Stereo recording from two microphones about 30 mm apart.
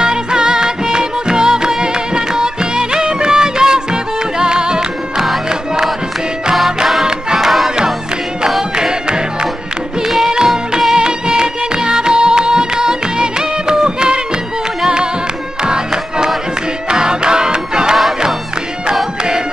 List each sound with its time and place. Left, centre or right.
0.0 s music: right
7.3 s music: centre
8.7 s music: right
15.6 s music: right